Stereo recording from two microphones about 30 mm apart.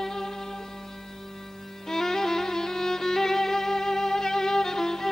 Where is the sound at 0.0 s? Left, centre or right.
Centre.